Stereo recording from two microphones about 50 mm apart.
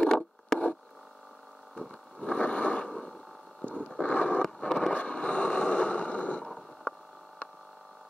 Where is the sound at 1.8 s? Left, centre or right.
Centre.